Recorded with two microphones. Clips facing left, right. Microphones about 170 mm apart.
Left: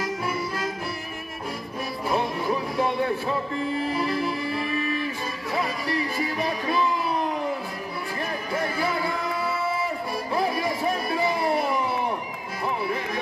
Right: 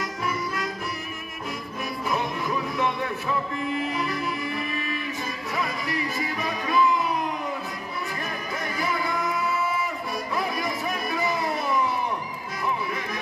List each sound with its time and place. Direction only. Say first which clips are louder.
0.0 s music: left 1 dB; 30° left (ahead or behind)
2.0 s music: left 3 dB; 30° left (ahead or behind)
8.5 s music: left 3 dB; 30° left (ahead or behind)